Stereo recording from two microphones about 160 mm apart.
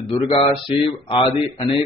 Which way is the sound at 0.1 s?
30° left (ahead or behind).